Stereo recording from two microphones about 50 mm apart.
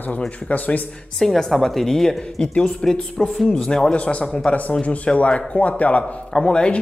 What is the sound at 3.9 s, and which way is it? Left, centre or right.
Speech, left.